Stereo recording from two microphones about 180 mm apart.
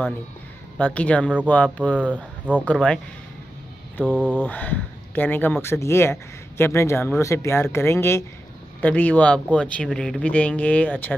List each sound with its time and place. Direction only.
0.7 s speech: 5° left (ahead or behind)
2.1 s speech: 10° right (ahead or behind)
2.6 s speech: 5° left (ahead or behind)
4.0 s speech: 5° right (ahead or behind)
4.4 s speech: 10° left (ahead or behind)